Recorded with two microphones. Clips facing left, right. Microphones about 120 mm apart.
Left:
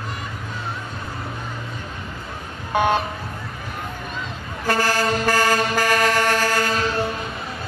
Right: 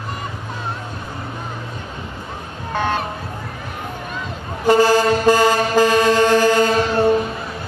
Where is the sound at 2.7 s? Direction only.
15° left (ahead or behind).